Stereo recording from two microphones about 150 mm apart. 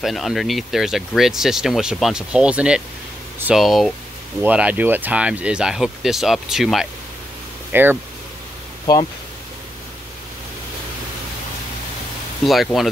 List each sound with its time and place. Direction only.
0.0 s speech: centre (ahead or behind)
7.7 s speech: 15° right (ahead or behind)
8.9 s speech: 25° left (ahead or behind)